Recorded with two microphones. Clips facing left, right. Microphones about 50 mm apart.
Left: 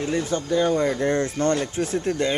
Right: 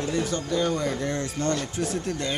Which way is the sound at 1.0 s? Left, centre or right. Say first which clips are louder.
Left 6 dB; left.